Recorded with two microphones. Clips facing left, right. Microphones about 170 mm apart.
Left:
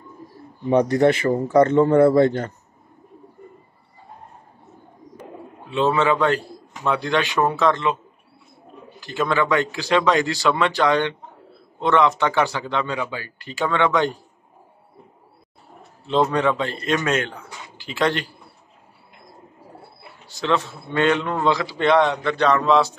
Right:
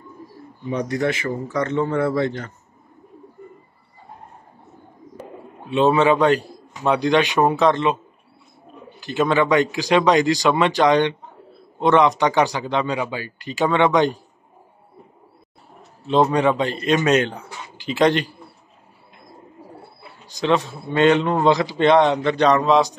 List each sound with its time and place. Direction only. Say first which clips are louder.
1.3 s a man's voice: left 7 dB; 50° left (ahead or behind)
5.7 s a man's voice: right 3 dB; 15° right (ahead or behind)
9.0 s a man's voice: right 3 dB; 20° right (ahead or behind)
16.1 s a man's voice: right 2 dB; 15° right (ahead or behind)
20.2 s a man's voice: right 3 dB; 15° right (ahead or behind)